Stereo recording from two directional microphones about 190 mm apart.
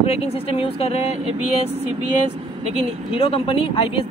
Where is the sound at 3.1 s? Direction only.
30° left (ahead or behind).